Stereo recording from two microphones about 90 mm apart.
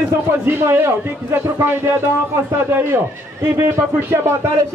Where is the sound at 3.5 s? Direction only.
30° right (ahead or behind).